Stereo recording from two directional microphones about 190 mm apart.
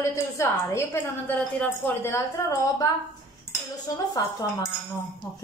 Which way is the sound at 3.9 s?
20° left (ahead or behind).